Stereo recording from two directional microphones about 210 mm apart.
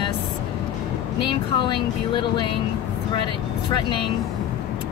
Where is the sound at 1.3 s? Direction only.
25° left (ahead or behind).